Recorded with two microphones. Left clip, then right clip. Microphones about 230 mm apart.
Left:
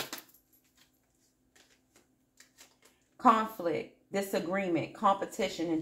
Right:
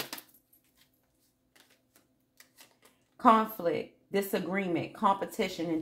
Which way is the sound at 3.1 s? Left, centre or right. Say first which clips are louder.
Right 2 dB; right.